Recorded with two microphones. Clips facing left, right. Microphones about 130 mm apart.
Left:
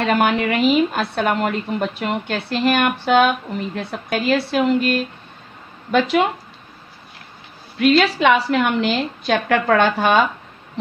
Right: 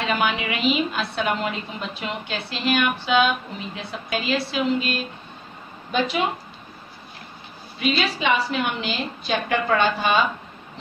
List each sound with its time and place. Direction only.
0.0 s a woman's voice: 50° left (ahead or behind)
5.9 s speech: 70° left (ahead or behind)
7.7 s a woman's voice: 70° left (ahead or behind)